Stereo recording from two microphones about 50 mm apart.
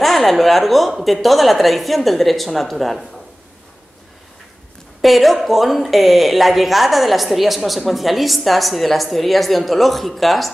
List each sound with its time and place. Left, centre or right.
0.0 s speech: centre
5.0 s speech: centre